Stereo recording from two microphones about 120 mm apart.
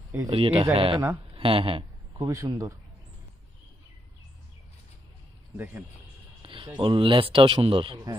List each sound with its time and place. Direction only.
0.3 s a man's voice: 50° right (ahead or behind)
2.1 s a man's voice: 25° right (ahead or behind)
5.6 s speech: 15° right (ahead or behind)
6.4 s a man's voice: 45° right (ahead or behind)